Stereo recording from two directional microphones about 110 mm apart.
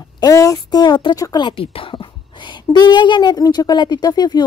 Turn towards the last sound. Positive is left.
turn(degrees=40)  # may be behind; listen again after turning